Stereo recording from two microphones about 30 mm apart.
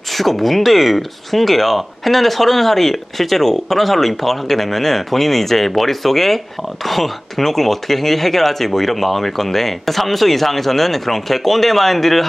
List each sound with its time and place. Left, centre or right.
0.1 s speech: centre